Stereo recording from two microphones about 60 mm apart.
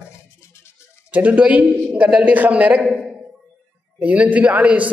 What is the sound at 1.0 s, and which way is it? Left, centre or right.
A man's voice, right.